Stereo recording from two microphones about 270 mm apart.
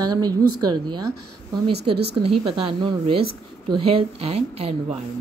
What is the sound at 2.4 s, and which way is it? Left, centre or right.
A woman's voice, centre.